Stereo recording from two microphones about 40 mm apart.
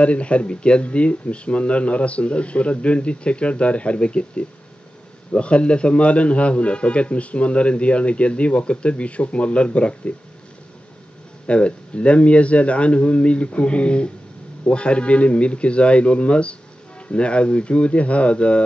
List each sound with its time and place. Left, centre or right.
0.0 s a man's voice: left
11.4 s a man's voice: left